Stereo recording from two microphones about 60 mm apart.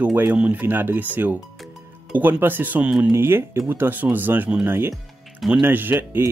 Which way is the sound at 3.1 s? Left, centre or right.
Right.